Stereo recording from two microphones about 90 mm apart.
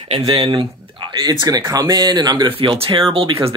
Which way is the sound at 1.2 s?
50° right (ahead or behind).